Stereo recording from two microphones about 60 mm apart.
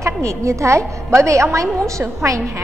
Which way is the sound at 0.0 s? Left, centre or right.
Right.